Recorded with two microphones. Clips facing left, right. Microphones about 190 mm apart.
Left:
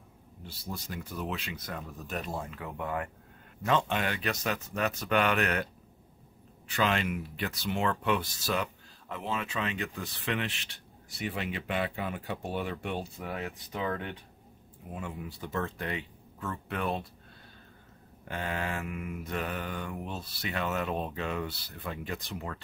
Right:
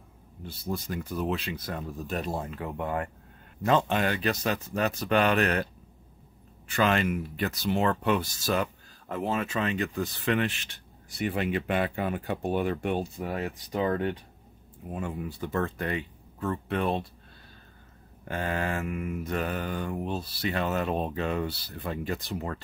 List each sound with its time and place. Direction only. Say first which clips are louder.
0.7 s mantra: right 7 dB; 45° right (ahead or behind)
6.7 s speech: right 4 dB; 50° right (ahead or behind)
15.0 s speech: right 6 dB; 50° right (ahead or behind)
16.3 s speech: right 6 dB; 35° right (ahead or behind)
18.3 s mantra: right 4 dB; 45° right (ahead or behind)